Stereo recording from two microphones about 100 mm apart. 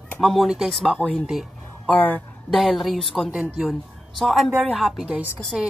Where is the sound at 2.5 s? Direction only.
Centre (ahead or behind).